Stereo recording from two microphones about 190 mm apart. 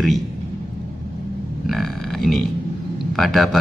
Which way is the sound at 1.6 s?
Centre (ahead or behind).